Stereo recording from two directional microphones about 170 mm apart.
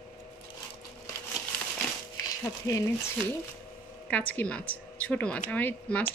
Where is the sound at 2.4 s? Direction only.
20° left (ahead or behind).